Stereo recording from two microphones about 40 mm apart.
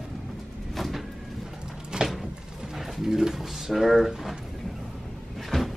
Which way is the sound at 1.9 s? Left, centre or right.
Right.